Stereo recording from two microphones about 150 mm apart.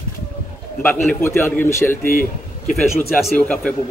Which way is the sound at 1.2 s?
15° left (ahead or behind).